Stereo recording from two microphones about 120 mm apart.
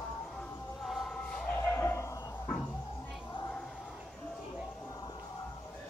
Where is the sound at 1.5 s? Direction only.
20° left (ahead or behind).